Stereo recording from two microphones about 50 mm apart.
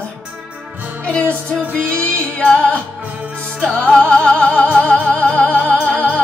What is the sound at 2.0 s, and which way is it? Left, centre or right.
Music, left.